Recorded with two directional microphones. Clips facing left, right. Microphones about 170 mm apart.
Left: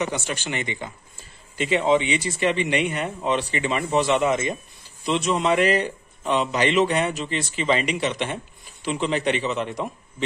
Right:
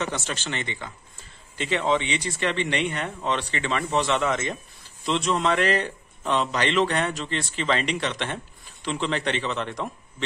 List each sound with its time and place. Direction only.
0.0 s a man's voice: 15° left (ahead or behind)